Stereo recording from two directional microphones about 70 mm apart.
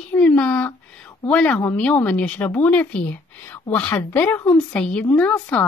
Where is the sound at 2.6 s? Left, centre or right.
Centre.